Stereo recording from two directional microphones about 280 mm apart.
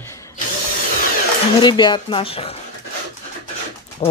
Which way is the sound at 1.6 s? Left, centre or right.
Centre.